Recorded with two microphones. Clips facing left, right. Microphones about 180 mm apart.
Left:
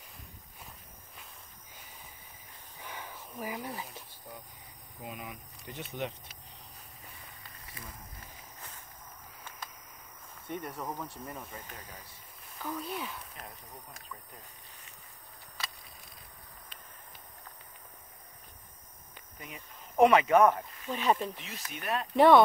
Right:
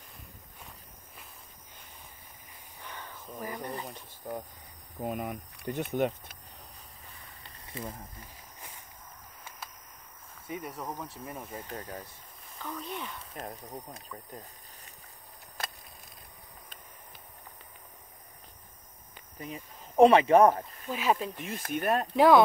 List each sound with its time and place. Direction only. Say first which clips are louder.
2.8 s a sound: left 1 dB; 10° left (ahead or behind)
4.2 s a sound: right 12 dB; 50° right (ahead or behind)
5.0 s speech: right 9 dB; 50° right (ahead or behind)
7.7 s speech: right 11 dB; 25° right (ahead or behind)
10.5 s speech: even; 5° right (ahead or behind)
12.5 s speech: left 1 dB; 5° left (ahead or behind)
13.2 s speech: right 6 dB; 25° right (ahead or behind)
19.4 s speech: right 7 dB; 35° right (ahead or behind)
20.9 s speech: even; 5° right (ahead or behind)
21.4 s speech: right 10 dB; 50° right (ahead or behind)
22.1 s speech: even; centre (ahead or behind)